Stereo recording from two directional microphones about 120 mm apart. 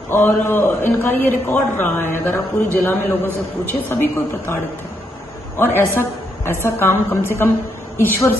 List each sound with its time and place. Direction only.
0.1 s a man's voice: 20° left (ahead or behind)
5.6 s a woman's voice: 20° left (ahead or behind)